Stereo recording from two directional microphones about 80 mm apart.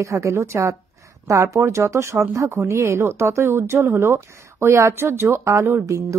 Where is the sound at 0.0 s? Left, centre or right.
Right.